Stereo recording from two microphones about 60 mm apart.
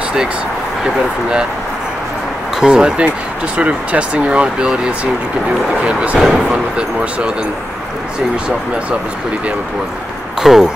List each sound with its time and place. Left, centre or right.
0.8 s speech: centre
2.6 s speech: centre
6.1 s speech: centre
6.5 s speech: centre
10.4 s speech: centre